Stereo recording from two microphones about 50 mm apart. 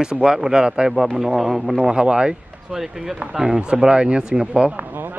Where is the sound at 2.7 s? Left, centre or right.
Centre.